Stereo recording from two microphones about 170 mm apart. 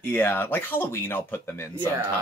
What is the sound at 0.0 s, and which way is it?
Speech, 10° left (ahead or behind).